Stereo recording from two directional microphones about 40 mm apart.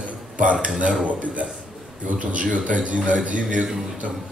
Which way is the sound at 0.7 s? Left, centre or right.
Right.